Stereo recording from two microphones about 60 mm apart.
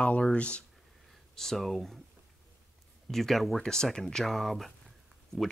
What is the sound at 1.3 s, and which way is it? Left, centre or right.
Speech, centre.